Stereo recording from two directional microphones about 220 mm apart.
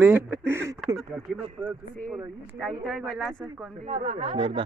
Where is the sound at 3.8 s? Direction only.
30° right (ahead or behind).